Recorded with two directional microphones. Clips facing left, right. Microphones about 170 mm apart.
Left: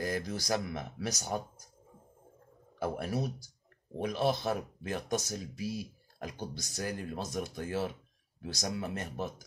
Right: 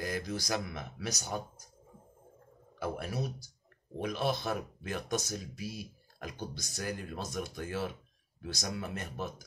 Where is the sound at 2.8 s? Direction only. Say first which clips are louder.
Left 2 dB; 35° left (ahead or behind).